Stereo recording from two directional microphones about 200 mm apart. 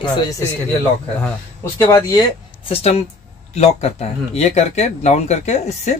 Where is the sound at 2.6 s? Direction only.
30° left (ahead or behind).